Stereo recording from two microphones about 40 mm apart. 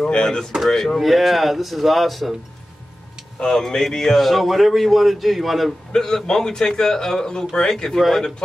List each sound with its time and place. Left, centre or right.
0.0 s speech: centre
0.9 s a man's voice: centre
3.3 s a man's voice: centre
5.9 s speech: centre